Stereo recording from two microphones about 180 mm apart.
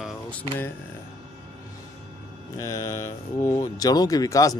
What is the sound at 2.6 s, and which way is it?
Speech, 15° left (ahead or behind).